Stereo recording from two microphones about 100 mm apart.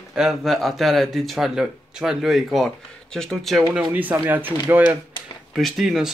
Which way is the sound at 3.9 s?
20° right (ahead or behind).